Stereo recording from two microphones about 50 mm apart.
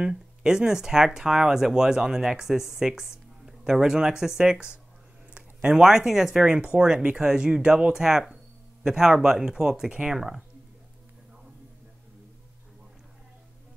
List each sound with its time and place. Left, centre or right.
0.0 s speech: centre
6.4 s speech: right